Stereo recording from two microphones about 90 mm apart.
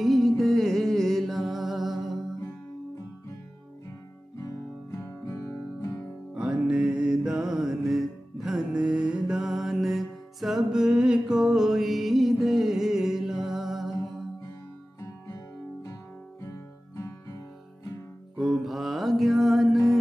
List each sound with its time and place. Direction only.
0.0 s music: centre (ahead or behind)
4.4 s guitar: 35° left (ahead or behind)
6.3 s music: 15° right (ahead or behind)
15.2 s music: 35° left (ahead or behind)
18.4 s music: centre (ahead or behind)